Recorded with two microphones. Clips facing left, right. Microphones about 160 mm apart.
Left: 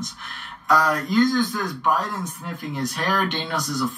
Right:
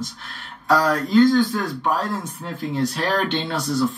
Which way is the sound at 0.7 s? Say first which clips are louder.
Right 2 dB; 30° right (ahead or behind).